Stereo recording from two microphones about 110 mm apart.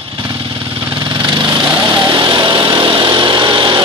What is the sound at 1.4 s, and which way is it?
Vehicle, 45° right (ahead or behind).